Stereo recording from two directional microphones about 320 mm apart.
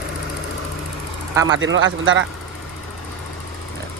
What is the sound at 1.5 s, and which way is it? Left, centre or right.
Speech, right.